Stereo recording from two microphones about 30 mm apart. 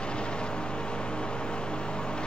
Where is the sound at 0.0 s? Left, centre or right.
Left.